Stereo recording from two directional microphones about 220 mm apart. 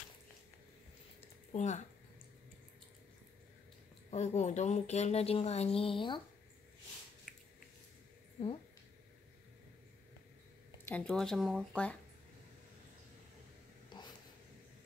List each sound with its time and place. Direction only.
1.5 s speech: 35° left (ahead or behind)
4.1 s speech: 30° left (ahead or behind)
7.3 s biting: 5° right (ahead or behind)
10.9 s speech: 5° left (ahead or behind)
13.8 s a sound: 20° left (ahead or behind)